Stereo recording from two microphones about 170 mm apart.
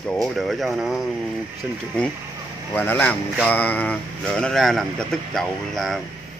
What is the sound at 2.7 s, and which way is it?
Speech, 10° left (ahead or behind).